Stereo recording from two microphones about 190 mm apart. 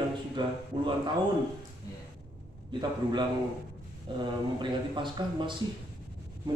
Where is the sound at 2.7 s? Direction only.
25° right (ahead or behind).